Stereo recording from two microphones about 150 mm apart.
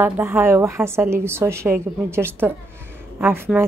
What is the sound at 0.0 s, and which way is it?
A woman's voice, 15° right (ahead or behind).